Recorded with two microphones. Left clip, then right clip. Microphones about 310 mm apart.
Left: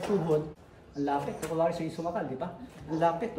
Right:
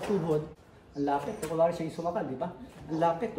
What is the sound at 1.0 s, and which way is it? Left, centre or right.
Speech, centre.